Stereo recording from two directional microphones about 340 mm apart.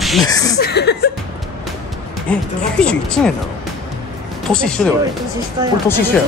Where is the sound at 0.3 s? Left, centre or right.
Centre.